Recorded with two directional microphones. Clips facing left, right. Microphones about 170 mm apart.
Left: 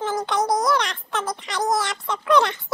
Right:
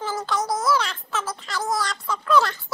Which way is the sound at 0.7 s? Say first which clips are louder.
Left 1 dB; 5° right (ahead or behind).